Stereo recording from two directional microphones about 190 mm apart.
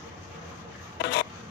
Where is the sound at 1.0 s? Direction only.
60° left (ahead or behind).